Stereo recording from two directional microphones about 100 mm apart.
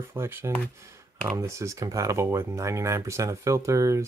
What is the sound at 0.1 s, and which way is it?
Speech, 25° right (ahead or behind).